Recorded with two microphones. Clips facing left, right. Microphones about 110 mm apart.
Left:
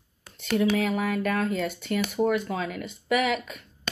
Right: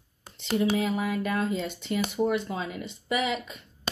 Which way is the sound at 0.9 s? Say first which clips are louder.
Left 2 dB; 55° left (ahead or behind).